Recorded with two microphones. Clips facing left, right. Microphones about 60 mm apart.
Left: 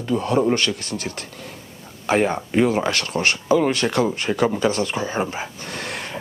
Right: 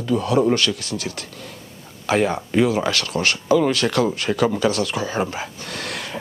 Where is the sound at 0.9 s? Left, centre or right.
Centre.